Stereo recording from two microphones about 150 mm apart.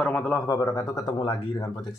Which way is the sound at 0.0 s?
15° left (ahead or behind).